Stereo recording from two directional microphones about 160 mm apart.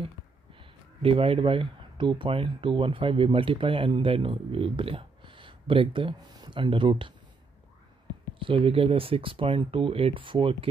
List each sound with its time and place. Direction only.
0.6 s speech: 35° right (ahead or behind)
8.4 s speech: 35° right (ahead or behind)